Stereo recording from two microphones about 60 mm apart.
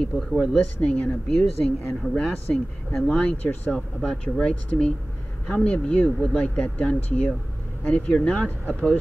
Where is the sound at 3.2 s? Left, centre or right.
Left.